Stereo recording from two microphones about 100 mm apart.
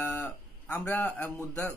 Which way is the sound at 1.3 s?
30° left (ahead or behind).